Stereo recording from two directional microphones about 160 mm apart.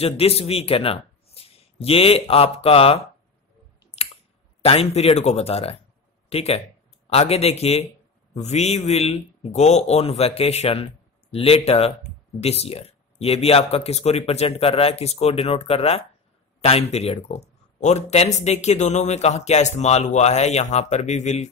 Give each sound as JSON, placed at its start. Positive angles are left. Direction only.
{"t": 0.0, "sound": "speech", "side_deg": 40}
{"t": 4.0, "sound": "chewing", "side_deg": 40}
{"t": 4.6, "sound": "speech", "side_deg": 40}